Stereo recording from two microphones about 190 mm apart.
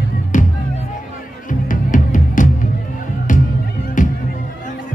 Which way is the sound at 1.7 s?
45° left (ahead or behind).